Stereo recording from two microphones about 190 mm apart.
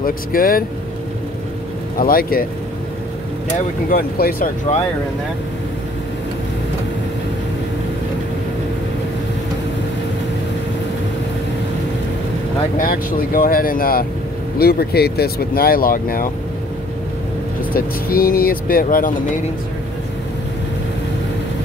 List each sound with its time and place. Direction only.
0.0 s speech: 50° left (ahead or behind)
2.0 s speech: 50° left (ahead or behind)
3.9 s speech: 50° left (ahead or behind)
12.7 s speech: 45° left (ahead or behind)
17.7 s speech: 50° left (ahead or behind)